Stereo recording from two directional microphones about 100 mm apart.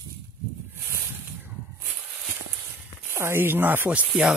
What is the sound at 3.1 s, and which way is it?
Speech, 25° right (ahead or behind).